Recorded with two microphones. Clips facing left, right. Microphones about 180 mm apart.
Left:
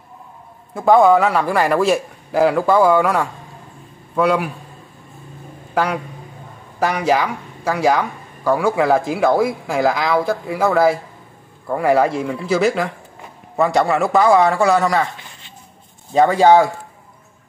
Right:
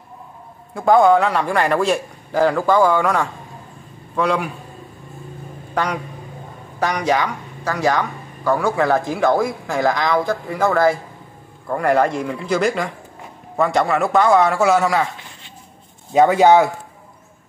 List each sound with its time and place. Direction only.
0.7 s a man's voice: centre (ahead or behind)
5.8 s speech: 5° left (ahead or behind)
16.1 s speech: 15° right (ahead or behind)